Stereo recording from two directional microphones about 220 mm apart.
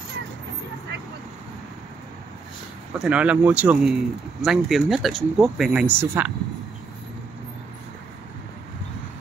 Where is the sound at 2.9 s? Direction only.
5° right (ahead or behind).